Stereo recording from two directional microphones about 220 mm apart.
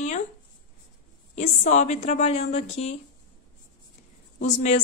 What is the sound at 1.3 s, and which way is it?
A woman's voice, 30° left (ahead or behind).